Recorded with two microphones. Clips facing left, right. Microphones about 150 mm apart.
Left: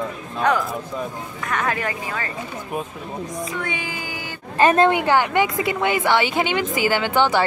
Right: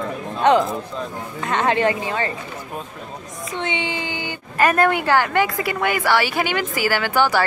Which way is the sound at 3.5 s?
25° right (ahead or behind).